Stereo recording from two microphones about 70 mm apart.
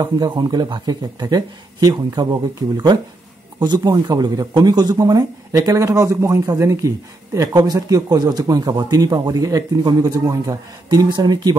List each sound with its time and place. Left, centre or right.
0.0 s speech: right
2.2 s speech: right
3.5 s speech: right
7.3 s speech: right